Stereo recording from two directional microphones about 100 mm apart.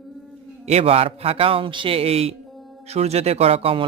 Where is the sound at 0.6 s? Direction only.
90° right.